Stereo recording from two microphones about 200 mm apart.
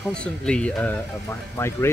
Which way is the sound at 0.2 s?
5° left (ahead or behind).